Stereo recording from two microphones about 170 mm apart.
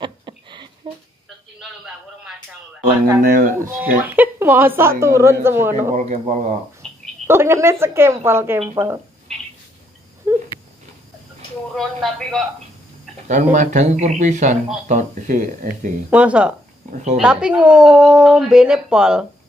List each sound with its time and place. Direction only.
0.8 s a sound: 30° right (ahead or behind)
3.2 s speech: 55° right (ahead or behind)
4.0 s a woman's voice: 10° right (ahead or behind)
5.8 s speech: 45° right (ahead or behind)
7.2 s a woman's voice: 15° right (ahead or behind)
10.3 s a sound: 15° right (ahead or behind)
11.7 s speech: centre (ahead or behind)
13.3 s speech: 50° right (ahead or behind)
16.1 s a woman's voice: 5° right (ahead or behind)